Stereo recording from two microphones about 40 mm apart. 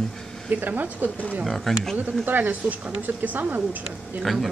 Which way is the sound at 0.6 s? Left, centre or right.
Right.